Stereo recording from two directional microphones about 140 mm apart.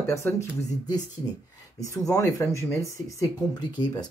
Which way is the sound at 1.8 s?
25° left (ahead or behind).